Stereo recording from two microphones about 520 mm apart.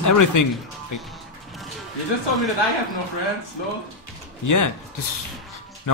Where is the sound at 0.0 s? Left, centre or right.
Left.